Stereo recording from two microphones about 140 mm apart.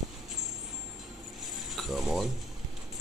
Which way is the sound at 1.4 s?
Centre (ahead or behind).